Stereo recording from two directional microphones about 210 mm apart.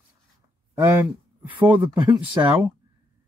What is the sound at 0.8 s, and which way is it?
Speech, 10° right (ahead or behind).